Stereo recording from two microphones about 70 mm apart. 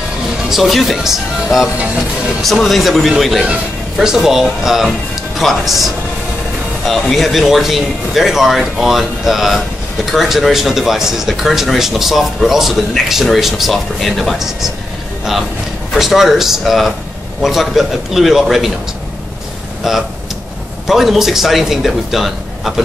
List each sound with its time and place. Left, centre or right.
0.5 s speech: centre
6.9 s speech: centre
15.9 s speech: centre
19.8 s speech: centre